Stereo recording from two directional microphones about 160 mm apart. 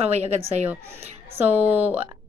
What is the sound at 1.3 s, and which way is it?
Speech, 10° right (ahead or behind).